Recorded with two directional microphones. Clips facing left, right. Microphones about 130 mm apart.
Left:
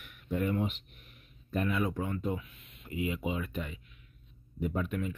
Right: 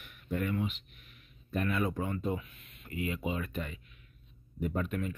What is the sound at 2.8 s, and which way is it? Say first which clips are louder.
Speech: left 1 dB; 15° left (ahead or behind).